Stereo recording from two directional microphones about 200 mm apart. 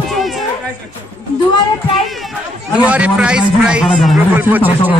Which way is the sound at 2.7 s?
5° right (ahead or behind).